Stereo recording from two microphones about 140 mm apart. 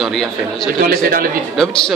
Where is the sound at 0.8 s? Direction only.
90° right.